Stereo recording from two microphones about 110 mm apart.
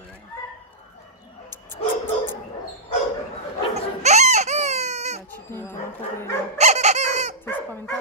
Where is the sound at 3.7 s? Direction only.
90° right.